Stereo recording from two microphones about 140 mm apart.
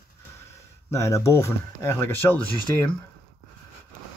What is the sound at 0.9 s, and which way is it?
Speech, 20° left (ahead or behind).